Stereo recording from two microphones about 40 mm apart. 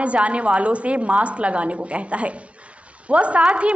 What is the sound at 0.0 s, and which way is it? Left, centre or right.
A woman's voice, right.